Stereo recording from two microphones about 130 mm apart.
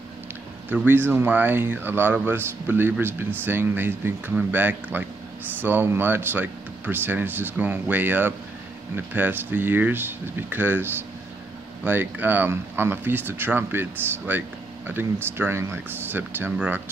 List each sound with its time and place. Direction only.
0.7 s speech: 15° right (ahead or behind)